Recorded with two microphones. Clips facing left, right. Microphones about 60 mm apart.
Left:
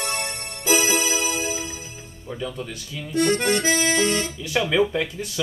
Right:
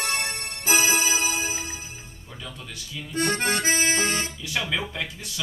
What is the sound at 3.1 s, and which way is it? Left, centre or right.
Accordion, right.